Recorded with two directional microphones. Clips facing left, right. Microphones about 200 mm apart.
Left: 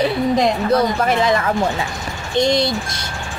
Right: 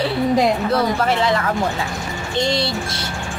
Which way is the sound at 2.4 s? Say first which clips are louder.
Left 4 dB; 20° left (ahead or behind).